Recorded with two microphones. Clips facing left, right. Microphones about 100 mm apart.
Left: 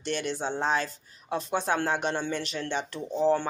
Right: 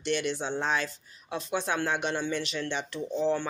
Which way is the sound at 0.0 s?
40° left (ahead or behind).